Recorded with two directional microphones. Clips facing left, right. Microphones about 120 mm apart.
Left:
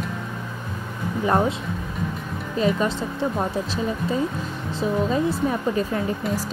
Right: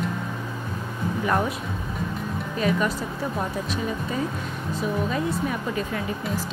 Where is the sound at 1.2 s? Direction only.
30° left (ahead or behind).